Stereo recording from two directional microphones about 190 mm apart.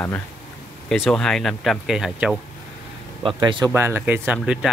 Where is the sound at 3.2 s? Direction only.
25° right (ahead or behind).